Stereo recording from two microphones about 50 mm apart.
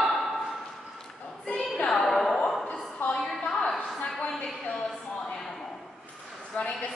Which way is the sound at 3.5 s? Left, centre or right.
Centre.